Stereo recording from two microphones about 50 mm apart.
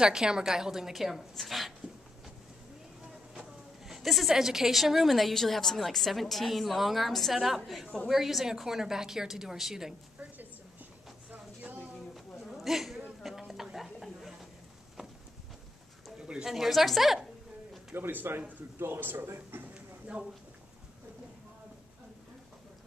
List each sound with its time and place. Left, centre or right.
0.0 s a woman's voice: centre
3.9 s a woman's voice: centre
11.3 s a sound: right
12.1 s a sound: centre
16.2 s bird: centre
16.4 s a woman's voice: centre
17.9 s speech: right